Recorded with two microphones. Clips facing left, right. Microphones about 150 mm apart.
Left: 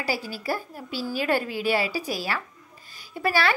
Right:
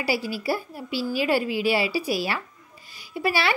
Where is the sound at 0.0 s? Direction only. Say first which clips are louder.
Right 3 dB; 10° right (ahead or behind).